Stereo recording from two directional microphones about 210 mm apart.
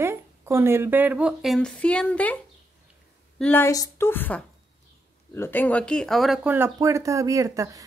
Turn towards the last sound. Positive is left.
turn(degrees=-15)  # may be behind; listen again after turning